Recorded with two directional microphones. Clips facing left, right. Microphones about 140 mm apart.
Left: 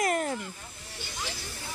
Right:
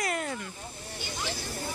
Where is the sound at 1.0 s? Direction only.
40° right (ahead or behind).